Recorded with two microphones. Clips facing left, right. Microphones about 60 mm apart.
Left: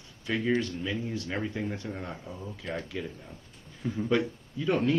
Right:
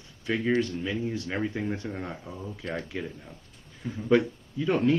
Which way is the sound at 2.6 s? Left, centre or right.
Centre.